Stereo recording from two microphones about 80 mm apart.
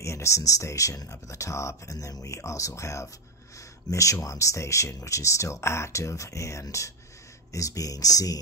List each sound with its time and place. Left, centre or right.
0.0 s speech: left